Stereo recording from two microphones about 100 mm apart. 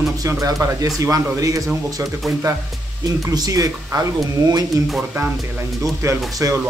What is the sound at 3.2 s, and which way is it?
A man's voice, 40° right (ahead or behind).